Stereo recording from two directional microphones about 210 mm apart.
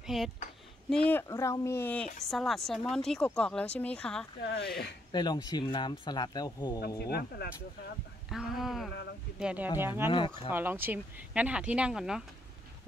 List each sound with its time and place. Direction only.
0.0 s speech: centre (ahead or behind)
4.4 s speech: 50° left (ahead or behind)
5.1 s speech: 20° left (ahead or behind)
7.1 s speech: 50° left (ahead or behind)
8.3 s speech: centre (ahead or behind)
10.1 s speech: 25° left (ahead or behind)
10.5 s speech: 10° right (ahead or behind)